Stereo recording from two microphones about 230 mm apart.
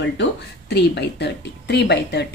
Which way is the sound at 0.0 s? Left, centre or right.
Left.